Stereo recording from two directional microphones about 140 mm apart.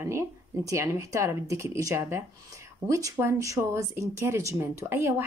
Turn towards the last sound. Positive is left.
turn(degrees=-15)  # may be behind; listen again after turning